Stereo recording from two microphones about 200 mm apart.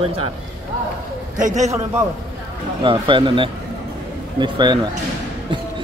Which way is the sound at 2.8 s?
25° right (ahead or behind).